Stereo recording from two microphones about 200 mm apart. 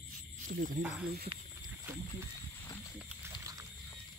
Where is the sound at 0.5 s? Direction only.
40° right (ahead or behind).